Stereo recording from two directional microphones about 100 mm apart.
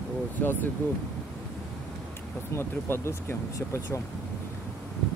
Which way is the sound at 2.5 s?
25° left (ahead or behind).